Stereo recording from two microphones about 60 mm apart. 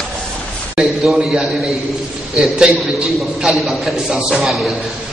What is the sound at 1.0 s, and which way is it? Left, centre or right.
Speech, centre.